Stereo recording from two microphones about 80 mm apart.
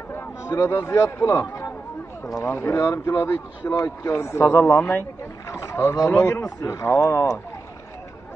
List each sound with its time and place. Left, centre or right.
0.1 s speech: left
2.4 s speech: left
2.8 s speech: left
3.2 s speech: left
3.7 s speech: left
4.1 s speech: left
5.5 s speech: left